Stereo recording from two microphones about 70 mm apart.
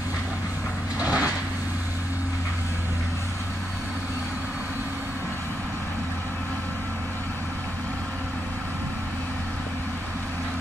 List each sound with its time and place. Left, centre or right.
0.9 s vehicle: right